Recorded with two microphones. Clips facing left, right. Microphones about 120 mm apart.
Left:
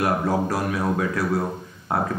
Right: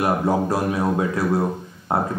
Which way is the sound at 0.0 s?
25° right (ahead or behind).